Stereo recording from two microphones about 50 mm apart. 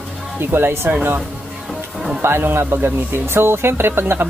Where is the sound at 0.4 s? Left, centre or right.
Right.